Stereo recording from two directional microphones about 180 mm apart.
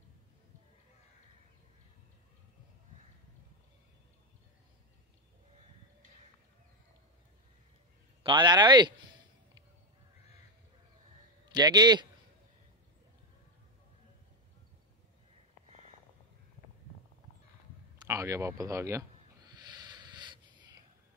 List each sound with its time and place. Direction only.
8.2 s speech: 25° right (ahead or behind)
11.4 s speech: 25° right (ahead or behind)
18.0 s snake: 15° right (ahead or behind)